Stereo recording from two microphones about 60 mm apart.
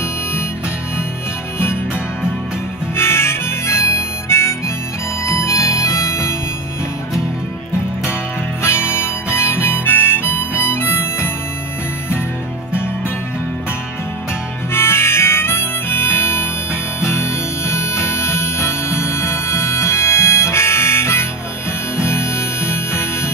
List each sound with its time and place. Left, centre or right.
3.0 s harmonica: left
5.2 s music: left
8.6 s harmonica: left
14.7 s harmonica: left
17.0 s music: left